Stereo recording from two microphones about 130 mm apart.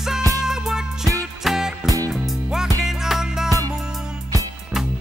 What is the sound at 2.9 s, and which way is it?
Music, 5° right (ahead or behind).